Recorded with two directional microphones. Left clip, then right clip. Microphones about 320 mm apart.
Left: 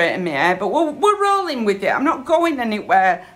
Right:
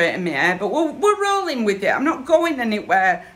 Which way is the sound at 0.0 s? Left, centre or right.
Centre.